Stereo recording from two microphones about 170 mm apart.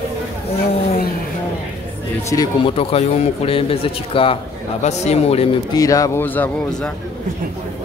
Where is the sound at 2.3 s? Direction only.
20° left (ahead or behind).